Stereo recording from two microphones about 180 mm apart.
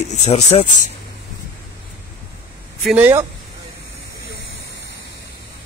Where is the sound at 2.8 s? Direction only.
5° right (ahead or behind).